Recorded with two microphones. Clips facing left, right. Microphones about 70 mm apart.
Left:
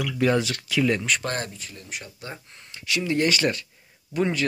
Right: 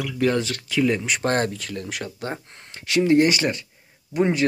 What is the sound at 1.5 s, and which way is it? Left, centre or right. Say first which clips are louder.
Speech: right 7 dB; right.